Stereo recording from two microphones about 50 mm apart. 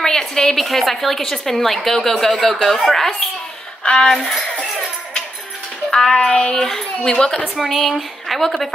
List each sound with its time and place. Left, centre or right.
0.0 s a woman's voice: centre
3.8 s a sound: left
4.1 s a woman's voice: centre
5.9 s child singing: centre
7.5 s a woman's voice: centre